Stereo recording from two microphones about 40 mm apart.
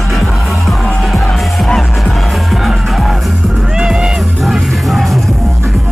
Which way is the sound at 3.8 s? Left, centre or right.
Centre.